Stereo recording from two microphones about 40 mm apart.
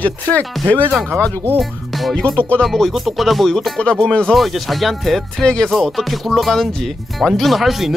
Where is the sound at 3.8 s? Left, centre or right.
Left.